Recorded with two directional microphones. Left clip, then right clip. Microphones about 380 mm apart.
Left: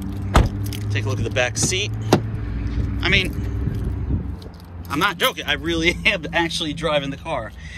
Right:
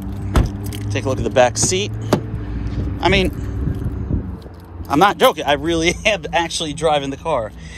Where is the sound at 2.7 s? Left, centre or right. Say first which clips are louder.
Right 3 dB; centre.